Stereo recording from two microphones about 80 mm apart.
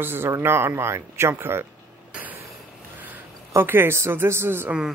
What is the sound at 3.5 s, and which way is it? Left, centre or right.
Speech, right.